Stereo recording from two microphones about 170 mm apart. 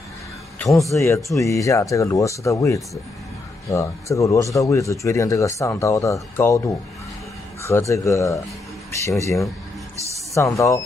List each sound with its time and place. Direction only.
0.6 s speech: centre (ahead or behind)
0.9 s speech: 15° left (ahead or behind)
7.6 s speech: 15° left (ahead or behind)